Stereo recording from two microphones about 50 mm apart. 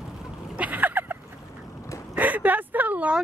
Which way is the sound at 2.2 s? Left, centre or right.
Right.